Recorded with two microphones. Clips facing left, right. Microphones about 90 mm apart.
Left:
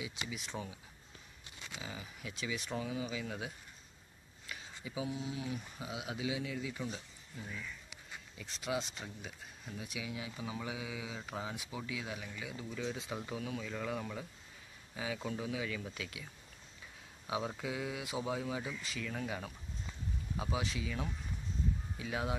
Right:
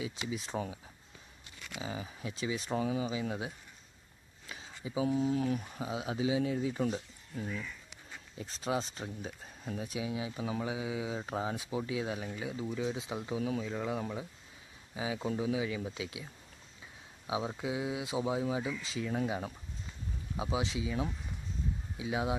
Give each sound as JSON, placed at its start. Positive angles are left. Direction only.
{"t": 0.3, "sound": "speech", "side_deg": -35}
{"t": 1.8, "sound": "speech", "side_deg": -30}
{"t": 4.5, "sound": "a sound", "side_deg": -25}
{"t": 5.0, "sound": "speech", "side_deg": -45}
{"t": 5.8, "sound": "speech", "side_deg": -35}
{"t": 8.4, "sound": "speech", "side_deg": -35}
{"t": 17.3, "sound": "speech", "side_deg": -15}